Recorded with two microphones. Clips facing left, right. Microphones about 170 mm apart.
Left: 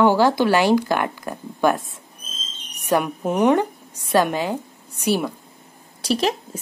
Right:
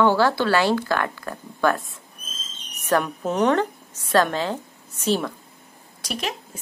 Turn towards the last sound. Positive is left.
turn(degrees=35)  # may be behind; listen again after turning